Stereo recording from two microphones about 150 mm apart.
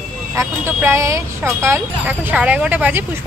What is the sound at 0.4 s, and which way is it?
Speech, 15° right (ahead or behind).